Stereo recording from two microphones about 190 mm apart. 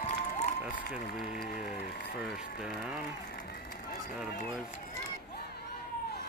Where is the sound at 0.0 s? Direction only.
40° left (ahead or behind).